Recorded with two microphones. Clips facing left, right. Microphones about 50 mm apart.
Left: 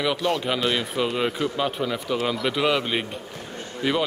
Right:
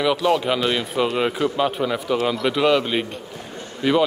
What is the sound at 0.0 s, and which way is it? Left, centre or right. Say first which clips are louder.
Speech: right 5 dB; centre.